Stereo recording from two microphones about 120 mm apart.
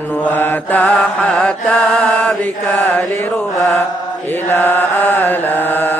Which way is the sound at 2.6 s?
15° left (ahead or behind).